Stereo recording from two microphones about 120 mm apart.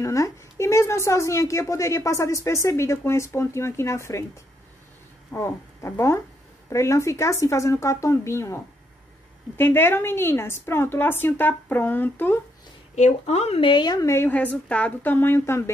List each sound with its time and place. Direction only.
0.0 s a woman's voice: 25° left (ahead or behind)
5.3 s a woman's voice: 25° left (ahead or behind)
9.6 s a woman's voice: 20° left (ahead or behind)
12.9 s speech: 65° left (ahead or behind); by 14.1 s 35° left (ahead or behind)
14.1 s a woman's voice: 15° left (ahead or behind)